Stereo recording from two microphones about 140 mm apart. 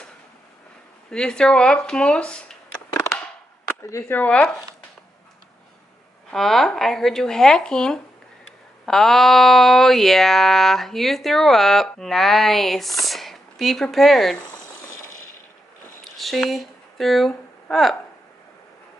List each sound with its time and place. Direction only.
1.1 s speech: 5° left (ahead or behind)
2.9 s a sound: 25° left (ahead or behind)
3.8 s speech: 20° left (ahead or behind)
4.2 s speech: 10° left (ahead or behind)
6.3 s speech: centre (ahead or behind)
16.0 s a sound: centre (ahead or behind)